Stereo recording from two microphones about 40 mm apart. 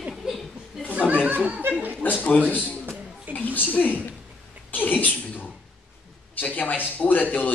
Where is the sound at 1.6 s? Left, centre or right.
Right.